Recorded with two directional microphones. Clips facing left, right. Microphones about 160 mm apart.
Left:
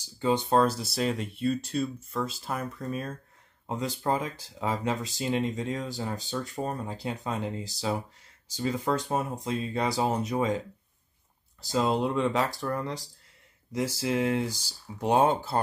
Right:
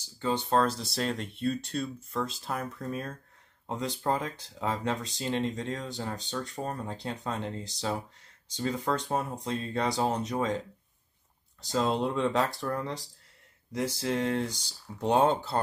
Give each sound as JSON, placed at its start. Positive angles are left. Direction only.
{"t": 0.2, "sound": "speech", "side_deg": 10}
{"t": 11.6, "sound": "speech", "side_deg": 5}